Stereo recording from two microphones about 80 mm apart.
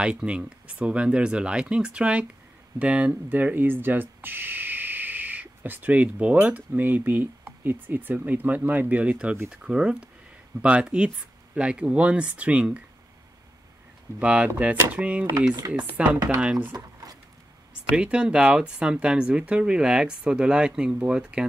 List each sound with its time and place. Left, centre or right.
0.0 s speech: centre
14.2 s speech: centre
16.7 s a sound: right
17.9 s speech: centre